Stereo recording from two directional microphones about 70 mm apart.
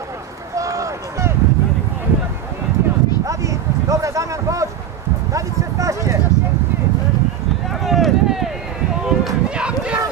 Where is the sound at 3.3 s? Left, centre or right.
Right.